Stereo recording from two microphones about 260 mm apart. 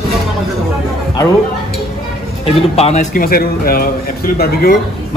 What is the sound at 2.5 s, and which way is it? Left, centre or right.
A man's voice, left.